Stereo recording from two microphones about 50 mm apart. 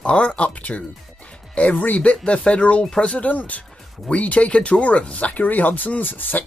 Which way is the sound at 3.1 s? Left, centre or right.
Left.